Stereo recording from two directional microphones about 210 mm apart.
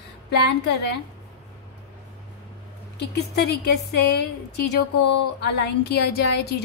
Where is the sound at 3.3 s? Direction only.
50° left (ahead or behind).